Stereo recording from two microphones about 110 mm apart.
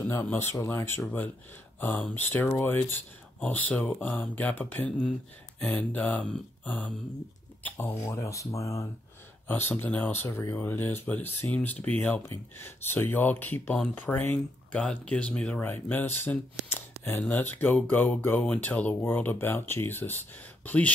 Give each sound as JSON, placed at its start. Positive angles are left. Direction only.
{"t": 0.0, "sound": "speech", "side_deg": 15}
{"t": 8.0, "sound": "speech", "side_deg": 30}
{"t": 9.5, "sound": "speech", "side_deg": 15}